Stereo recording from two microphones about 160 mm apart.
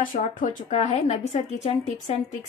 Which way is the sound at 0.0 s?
55° left (ahead or behind).